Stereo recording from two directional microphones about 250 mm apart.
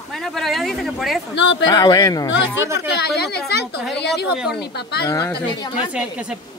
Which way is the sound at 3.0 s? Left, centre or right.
Left.